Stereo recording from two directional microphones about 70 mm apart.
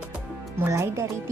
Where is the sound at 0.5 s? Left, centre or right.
Right.